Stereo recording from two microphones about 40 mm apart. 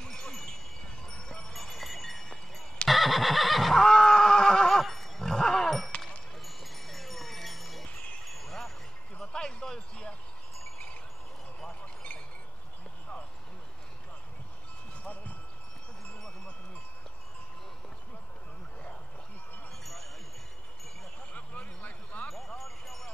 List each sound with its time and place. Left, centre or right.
0.0 s wind chime: left
1.0 s music: centre
1.5 s a sound: centre
2.9 s neigh: centre
3.8 s neigh: centre
4.8 s music: centre
5.3 s roaring cats: centre
6.4 s wind chime: centre
9.2 s basketball bounce: centre
10.6 s wind chime: left
11.8 s chink: left
19.8 s wind chime: centre
21.3 s a sound: left
22.3 s a sound: centre